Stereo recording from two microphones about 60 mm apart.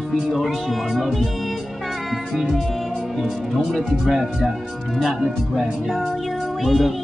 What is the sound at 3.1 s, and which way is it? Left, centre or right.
Speech, centre.